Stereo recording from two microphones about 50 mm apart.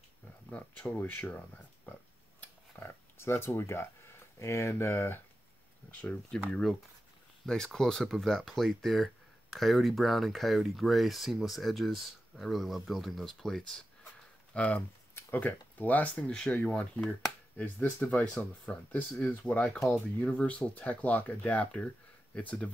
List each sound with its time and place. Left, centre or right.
0.5 s speech: left
2.8 s speech: left
5.9 s speech: left
6.5 s speech: centre
14.5 s speech: left
16.3 s speech: centre
17.6 s speech: left